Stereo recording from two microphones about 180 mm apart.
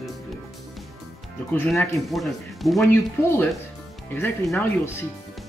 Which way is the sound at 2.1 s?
Centre (ahead or behind).